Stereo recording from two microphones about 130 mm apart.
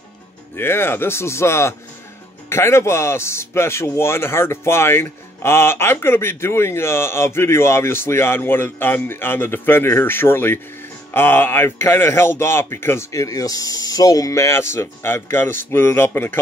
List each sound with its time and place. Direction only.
0.6 s speech: 15° left (ahead or behind)